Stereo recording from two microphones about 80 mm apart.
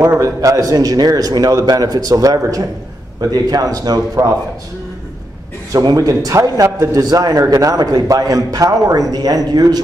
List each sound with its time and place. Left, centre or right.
0.2 s a man's voice: right
5.9 s a man's voice: right